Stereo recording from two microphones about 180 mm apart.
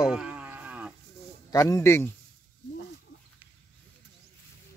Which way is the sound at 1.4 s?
20° left (ahead or behind).